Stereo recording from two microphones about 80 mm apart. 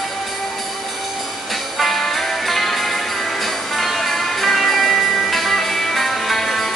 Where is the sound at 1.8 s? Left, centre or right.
Centre.